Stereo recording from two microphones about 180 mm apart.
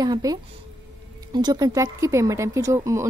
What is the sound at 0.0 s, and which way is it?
Speech, 20° right (ahead or behind).